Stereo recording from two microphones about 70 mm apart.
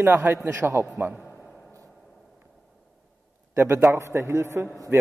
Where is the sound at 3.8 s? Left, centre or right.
Right.